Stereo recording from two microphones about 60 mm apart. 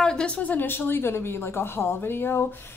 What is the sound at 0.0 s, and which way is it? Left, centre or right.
Speech, centre.